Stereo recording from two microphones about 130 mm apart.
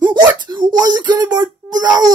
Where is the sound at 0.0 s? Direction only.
35° right (ahead or behind).